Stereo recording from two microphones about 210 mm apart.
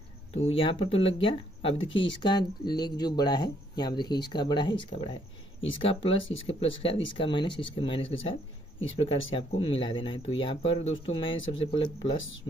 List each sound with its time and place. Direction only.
0.3 s speech: 30° left (ahead or behind)